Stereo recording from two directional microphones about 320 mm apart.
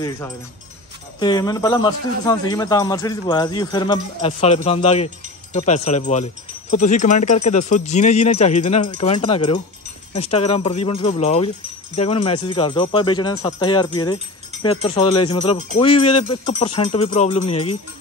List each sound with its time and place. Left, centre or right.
1.2 s speech: centre